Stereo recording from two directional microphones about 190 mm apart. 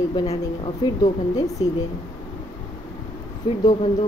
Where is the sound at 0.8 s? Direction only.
20° left (ahead or behind).